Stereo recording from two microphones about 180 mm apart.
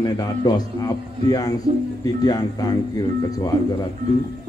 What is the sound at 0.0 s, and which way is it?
A man's voice, 20° left (ahead or behind).